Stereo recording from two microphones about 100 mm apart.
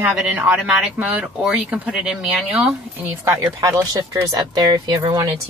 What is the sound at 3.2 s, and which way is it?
Speech, 30° right (ahead or behind).